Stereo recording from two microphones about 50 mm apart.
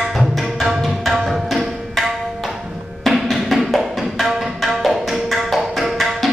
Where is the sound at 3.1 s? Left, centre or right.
Centre.